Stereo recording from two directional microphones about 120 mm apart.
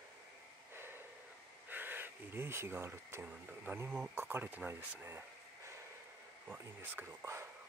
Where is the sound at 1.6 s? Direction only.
15° right (ahead or behind).